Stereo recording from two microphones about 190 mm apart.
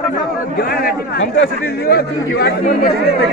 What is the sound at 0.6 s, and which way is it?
Speech, 50° left (ahead or behind).